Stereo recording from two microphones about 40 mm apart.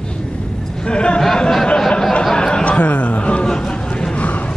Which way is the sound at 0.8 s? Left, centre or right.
Left.